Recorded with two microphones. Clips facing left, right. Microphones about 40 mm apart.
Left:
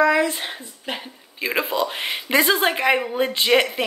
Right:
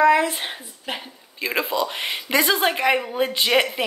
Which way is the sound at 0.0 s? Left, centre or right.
Centre.